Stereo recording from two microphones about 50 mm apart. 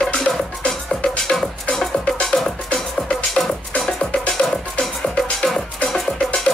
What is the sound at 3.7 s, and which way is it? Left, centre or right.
Music, left.